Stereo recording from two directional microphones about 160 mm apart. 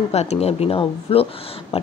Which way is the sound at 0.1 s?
40° left (ahead or behind).